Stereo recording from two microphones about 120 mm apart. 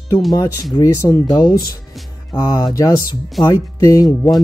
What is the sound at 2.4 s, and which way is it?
Speech, 30° left (ahead or behind).